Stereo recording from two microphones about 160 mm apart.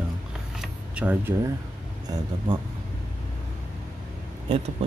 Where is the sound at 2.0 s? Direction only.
30° right (ahead or behind).